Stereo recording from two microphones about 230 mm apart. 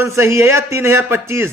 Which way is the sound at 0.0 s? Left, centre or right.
Centre.